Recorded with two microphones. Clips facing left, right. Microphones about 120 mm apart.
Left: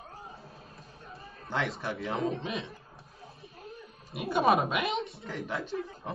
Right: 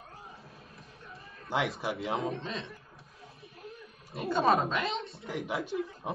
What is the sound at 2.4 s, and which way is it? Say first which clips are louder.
Speech: left 3 dB; 5° left (ahead or behind).